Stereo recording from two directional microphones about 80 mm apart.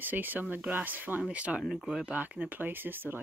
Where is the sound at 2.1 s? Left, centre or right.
Centre.